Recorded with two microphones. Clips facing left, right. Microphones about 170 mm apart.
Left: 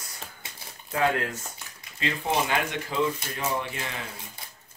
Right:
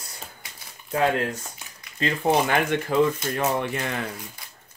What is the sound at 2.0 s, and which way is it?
Speech, 45° right (ahead or behind).